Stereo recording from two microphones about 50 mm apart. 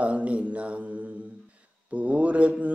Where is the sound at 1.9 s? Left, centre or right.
Right.